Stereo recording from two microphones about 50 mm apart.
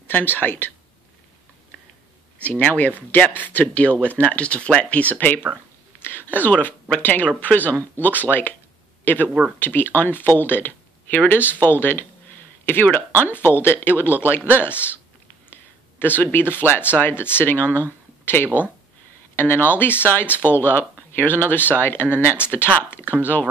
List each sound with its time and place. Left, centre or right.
0.0 s speech: left
2.4 s speech: left
5.9 s a sound: left
7.0 s speech: left